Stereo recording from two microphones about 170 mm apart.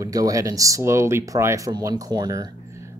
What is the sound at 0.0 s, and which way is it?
Speech, 20° right (ahead or behind).